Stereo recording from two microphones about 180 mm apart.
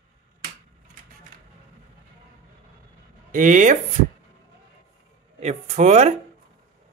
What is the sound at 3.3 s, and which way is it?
Speech, 50° right (ahead or behind).